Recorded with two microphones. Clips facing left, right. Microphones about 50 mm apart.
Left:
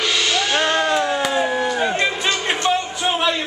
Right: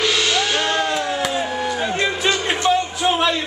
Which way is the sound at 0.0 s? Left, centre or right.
Centre.